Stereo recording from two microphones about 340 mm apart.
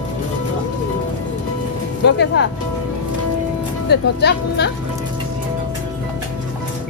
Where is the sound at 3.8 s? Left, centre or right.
Left.